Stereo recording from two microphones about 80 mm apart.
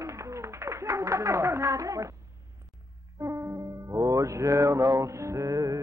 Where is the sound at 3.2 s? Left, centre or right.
Right.